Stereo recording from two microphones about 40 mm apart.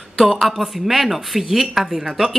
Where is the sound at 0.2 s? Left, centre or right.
Centre.